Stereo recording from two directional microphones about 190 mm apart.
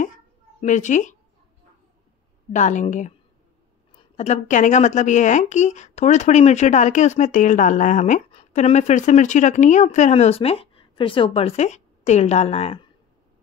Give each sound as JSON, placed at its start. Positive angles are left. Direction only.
{"t": 0.6, "sound": "speech", "side_deg": 40}
{"t": 2.5, "sound": "speech", "side_deg": 40}
{"t": 4.2, "sound": "speech", "side_deg": 40}